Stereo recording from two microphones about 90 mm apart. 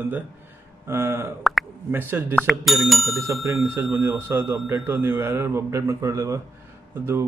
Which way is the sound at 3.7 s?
30° right (ahead or behind).